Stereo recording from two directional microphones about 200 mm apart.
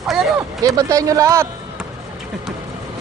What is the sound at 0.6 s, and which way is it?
Speech, 15° right (ahead or behind).